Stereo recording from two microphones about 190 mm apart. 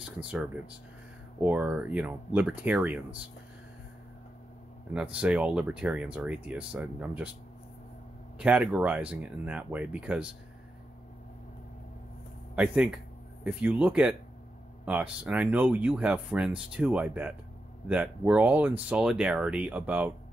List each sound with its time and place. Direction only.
0.0 s speech: 5° right (ahead or behind)
4.9 s speech: 5° right (ahead or behind)
8.4 s speech: 5° right (ahead or behind)
12.5 s speech: 5° right (ahead or behind)